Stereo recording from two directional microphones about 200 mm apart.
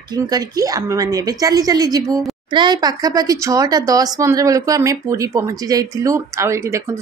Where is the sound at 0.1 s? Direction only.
20° right (ahead or behind).